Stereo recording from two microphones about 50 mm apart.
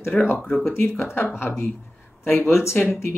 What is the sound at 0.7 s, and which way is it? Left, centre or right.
Speech, left.